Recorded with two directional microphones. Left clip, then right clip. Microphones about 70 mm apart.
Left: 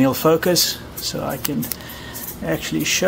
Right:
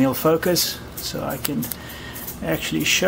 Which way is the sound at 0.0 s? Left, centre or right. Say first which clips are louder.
Left 2 dB; left.